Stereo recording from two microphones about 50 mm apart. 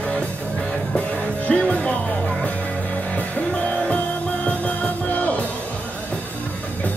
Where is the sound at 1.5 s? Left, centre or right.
Left.